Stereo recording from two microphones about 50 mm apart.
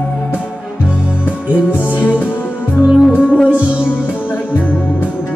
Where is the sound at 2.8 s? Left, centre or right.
Centre.